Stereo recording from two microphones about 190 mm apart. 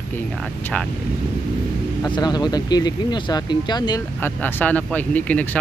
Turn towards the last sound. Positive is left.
turn(degrees=10)  # may be behind; listen again after turning